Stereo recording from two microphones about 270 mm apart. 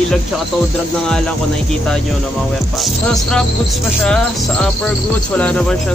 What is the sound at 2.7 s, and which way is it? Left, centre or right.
Speech, centre.